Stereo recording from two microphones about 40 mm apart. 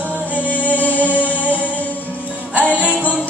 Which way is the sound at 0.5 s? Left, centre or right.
Left.